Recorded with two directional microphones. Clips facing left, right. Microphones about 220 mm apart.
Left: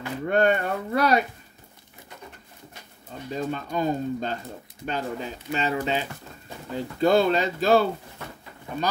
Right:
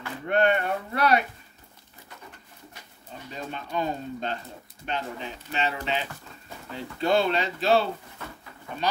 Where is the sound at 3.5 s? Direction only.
40° left (ahead or behind).